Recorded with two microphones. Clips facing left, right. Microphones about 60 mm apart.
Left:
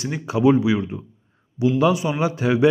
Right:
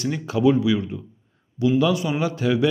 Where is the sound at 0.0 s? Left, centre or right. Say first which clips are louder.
Left 1 dB; centre.